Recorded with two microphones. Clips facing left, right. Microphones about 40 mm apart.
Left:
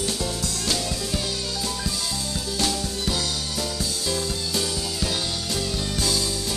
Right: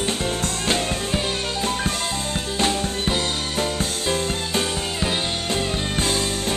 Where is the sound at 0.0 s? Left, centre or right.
Right.